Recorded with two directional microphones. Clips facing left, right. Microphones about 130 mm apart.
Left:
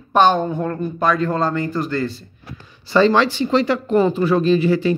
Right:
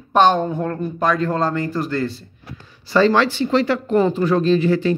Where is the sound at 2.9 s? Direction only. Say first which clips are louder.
Left 1 dB; 20° left (ahead or behind).